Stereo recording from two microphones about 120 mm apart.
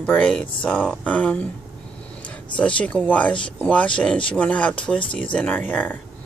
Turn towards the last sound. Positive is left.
turn(degrees=15)  # may be behind; listen again after turning